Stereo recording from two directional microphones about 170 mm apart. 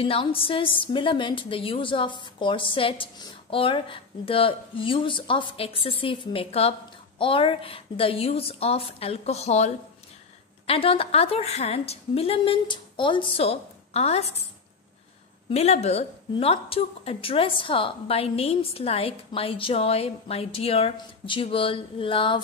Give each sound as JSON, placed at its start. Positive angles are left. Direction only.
{"t": 0.0, "sound": "a woman's voice", "side_deg": 30}
{"t": 10.7, "sound": "a woman's voice", "side_deg": 35}
{"t": 15.5, "sound": "a woman's voice", "side_deg": 40}